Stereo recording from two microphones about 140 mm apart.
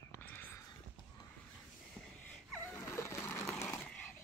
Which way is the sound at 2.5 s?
15° left (ahead or behind).